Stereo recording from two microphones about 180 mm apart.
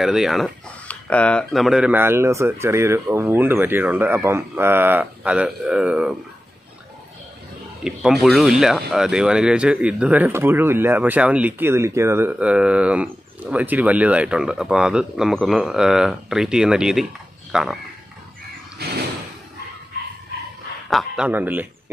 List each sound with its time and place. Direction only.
0.0 s speech: centre (ahead or behind)
7.8 s speech: 5° right (ahead or behind)
18.8 s a sound: 60° right (ahead or behind)
20.9 s speech: 5° right (ahead or behind)